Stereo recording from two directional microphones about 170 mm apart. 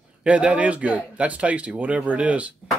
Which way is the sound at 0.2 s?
5° right (ahead or behind).